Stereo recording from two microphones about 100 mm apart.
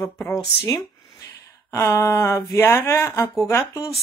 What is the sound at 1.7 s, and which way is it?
Speech, 30° left (ahead or behind).